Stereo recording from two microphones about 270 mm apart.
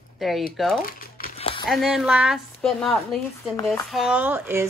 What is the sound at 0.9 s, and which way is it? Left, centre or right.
Crumpling, left.